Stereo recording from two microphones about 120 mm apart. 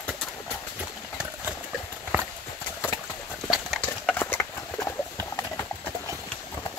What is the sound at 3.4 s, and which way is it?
Horse, 5° right (ahead or behind).